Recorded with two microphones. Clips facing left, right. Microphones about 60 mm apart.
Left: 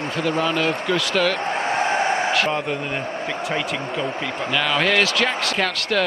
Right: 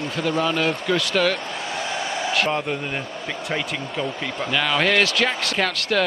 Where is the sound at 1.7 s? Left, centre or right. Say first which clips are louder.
Left 7 dB; left.